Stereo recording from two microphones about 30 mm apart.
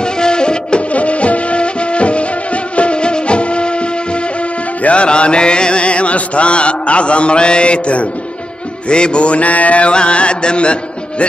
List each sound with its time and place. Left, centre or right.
0.0 s music: left
0.9 s music: left
4.8 s mantra: left
9.8 s music: left